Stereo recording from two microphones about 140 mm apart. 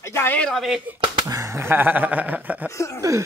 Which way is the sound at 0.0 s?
15° left (ahead or behind).